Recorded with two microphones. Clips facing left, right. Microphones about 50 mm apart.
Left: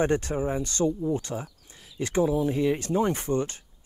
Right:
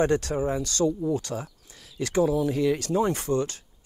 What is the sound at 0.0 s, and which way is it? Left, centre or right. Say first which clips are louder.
Speech: right 1 dB; left.